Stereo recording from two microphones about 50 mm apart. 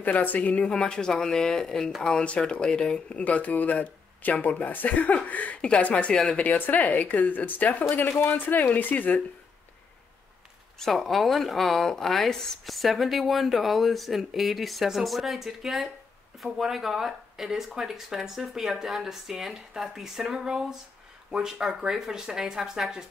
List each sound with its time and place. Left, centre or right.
0.0 s speech: left
0.7 s speech: centre; by 9.2 s left
10.8 s a woman's voice: centre